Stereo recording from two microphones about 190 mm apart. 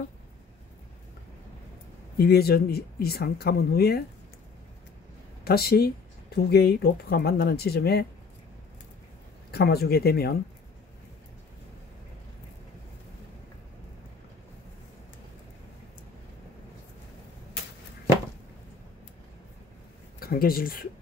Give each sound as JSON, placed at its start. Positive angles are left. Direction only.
{"t": 2.1, "sound": "speech", "side_deg": 55}
{"t": 5.4, "sound": "speech", "side_deg": 55}
{"t": 9.5, "sound": "speech", "side_deg": 55}
{"t": 20.2, "sound": "speech", "side_deg": 50}